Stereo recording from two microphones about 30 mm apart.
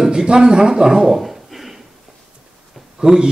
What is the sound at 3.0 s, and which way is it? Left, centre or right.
Speech, centre.